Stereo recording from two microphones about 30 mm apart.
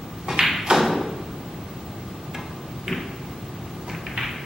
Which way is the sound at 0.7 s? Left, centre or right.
Centre.